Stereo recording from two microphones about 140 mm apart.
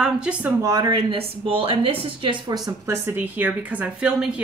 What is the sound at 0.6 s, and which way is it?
Speech, 25° right (ahead or behind).